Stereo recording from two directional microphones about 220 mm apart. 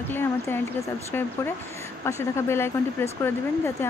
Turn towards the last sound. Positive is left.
turn(degrees=10)  # may be behind; listen again after turning